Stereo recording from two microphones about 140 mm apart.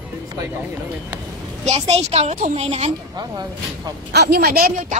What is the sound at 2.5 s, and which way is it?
Speech, 50° right (ahead or behind).